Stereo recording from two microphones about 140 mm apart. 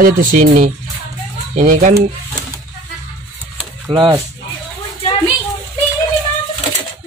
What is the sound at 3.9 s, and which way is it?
Speech, 35° right (ahead or behind).